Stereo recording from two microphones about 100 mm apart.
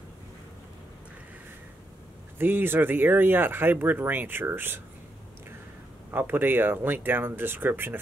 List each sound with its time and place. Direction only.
2.3 s speech: 20° right (ahead or behind)
6.1 s speech: 20° right (ahead or behind)